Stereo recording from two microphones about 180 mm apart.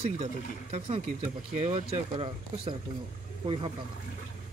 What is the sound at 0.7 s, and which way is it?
Speech, 30° right (ahead or behind).